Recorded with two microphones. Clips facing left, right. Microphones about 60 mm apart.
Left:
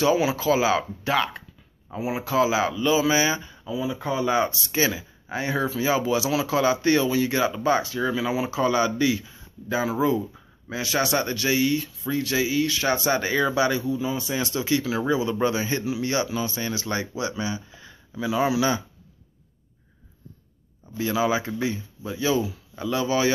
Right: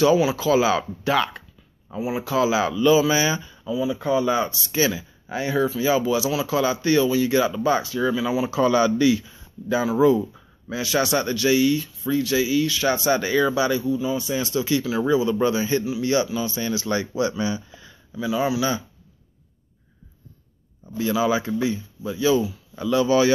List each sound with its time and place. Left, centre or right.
0.0 s speech: left
1.9 s speech: left
6.2 s speech: left
6.5 s speech: left
8.4 s speech: left
16.8 s speech: left
17.1 s speech: centre
17.7 s a sound: left
21.0 s speech: left